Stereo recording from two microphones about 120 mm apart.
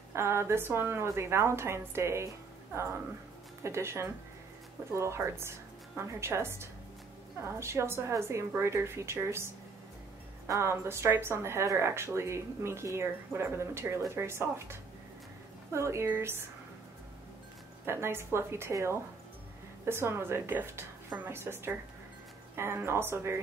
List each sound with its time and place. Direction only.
0.1 s speech: 20° right (ahead or behind)
17.8 s speech: 20° right (ahead or behind)